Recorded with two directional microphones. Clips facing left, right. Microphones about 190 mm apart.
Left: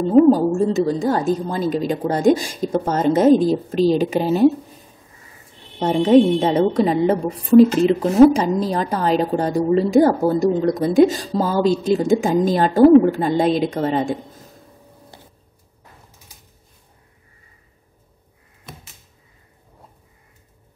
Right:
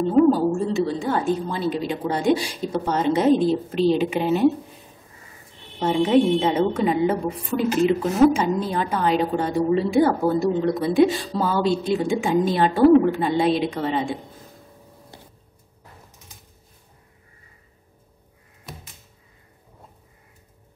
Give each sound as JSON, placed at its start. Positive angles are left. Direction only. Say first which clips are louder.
{"t": 0.3, "sound": "a woman's voice", "louder": "left 4 dB", "side_deg": 40}
{"t": 5.8, "sound": "a woman's voice", "louder": "left 5 dB", "side_deg": 40}